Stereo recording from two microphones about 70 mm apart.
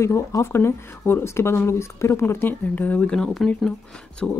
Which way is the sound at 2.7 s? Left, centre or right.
Left.